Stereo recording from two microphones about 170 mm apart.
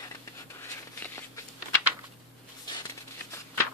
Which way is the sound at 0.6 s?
15° left (ahead or behind).